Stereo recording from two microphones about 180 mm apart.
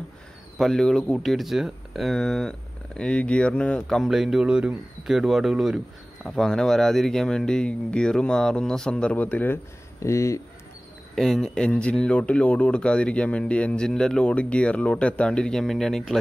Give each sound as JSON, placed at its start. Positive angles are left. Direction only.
{"t": 0.6, "sound": "speech", "side_deg": 0}
{"t": 11.1, "sound": "speech", "side_deg": 0}